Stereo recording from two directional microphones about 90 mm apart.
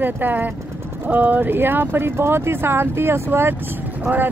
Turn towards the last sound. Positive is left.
turn(degrees=-15)  # may be behind; listen again after turning